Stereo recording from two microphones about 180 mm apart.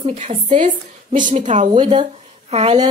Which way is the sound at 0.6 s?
45° right (ahead or behind).